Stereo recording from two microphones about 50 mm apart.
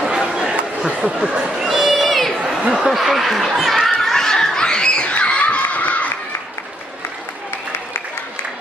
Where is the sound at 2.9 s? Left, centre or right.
Centre; by 6.1 s left.